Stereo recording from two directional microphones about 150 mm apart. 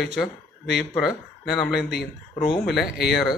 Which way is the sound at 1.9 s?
90° left.